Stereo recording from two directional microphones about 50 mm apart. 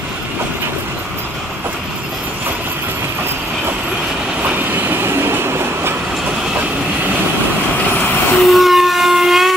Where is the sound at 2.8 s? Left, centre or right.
Right.